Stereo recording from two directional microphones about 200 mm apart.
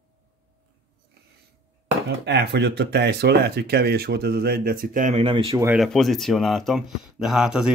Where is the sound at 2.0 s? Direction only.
55° right (ahead or behind); by 5.6 s 30° right (ahead or behind).